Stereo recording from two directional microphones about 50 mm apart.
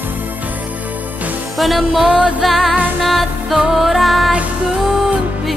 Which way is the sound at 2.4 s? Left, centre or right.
Centre.